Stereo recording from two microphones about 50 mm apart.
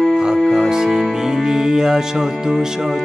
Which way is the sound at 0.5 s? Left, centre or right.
Centre.